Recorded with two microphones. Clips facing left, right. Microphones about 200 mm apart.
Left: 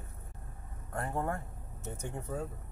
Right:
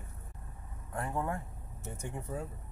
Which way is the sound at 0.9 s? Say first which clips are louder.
Left 1 dB; 45° left (ahead or behind).